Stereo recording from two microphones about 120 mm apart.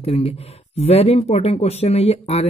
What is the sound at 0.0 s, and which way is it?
Speech, 55° left (ahead or behind).